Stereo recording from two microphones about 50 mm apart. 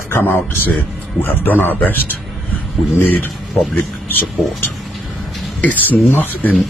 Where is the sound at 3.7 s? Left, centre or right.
Left.